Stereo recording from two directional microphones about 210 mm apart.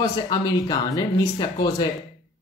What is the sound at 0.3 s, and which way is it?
Speech, 20° left (ahead or behind).